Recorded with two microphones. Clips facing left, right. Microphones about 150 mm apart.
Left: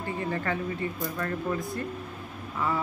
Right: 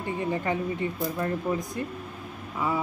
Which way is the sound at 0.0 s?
20° right (ahead or behind).